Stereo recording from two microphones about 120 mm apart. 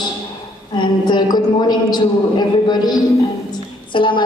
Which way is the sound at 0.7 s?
40° left (ahead or behind).